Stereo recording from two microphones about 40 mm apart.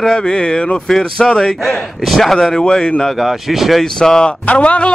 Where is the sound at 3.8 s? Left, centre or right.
Centre.